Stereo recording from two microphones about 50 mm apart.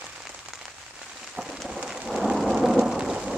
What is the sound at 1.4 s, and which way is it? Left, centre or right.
Rain, centre.